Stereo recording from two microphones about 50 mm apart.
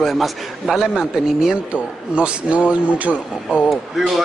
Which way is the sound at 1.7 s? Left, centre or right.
Right.